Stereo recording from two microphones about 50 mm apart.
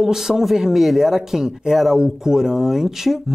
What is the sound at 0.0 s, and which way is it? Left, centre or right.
Speech, centre.